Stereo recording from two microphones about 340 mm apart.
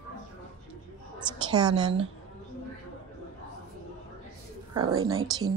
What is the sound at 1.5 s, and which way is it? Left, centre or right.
Speech, centre.